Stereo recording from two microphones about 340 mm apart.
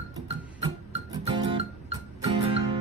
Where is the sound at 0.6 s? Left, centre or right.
Centre.